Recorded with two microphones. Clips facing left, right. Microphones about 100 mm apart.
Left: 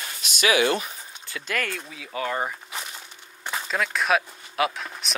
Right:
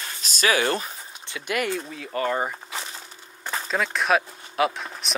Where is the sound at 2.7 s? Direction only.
30° right (ahead or behind).